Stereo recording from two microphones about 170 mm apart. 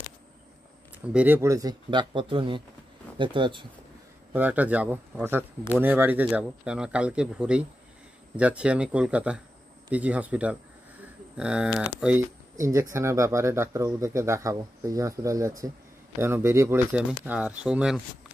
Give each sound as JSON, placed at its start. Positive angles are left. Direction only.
{"t": 1.0, "sound": "speech", "side_deg": -10}
{"t": 4.3, "sound": "speech", "side_deg": -10}